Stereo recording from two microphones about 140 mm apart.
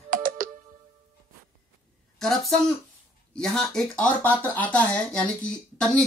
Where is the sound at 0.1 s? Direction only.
80° right.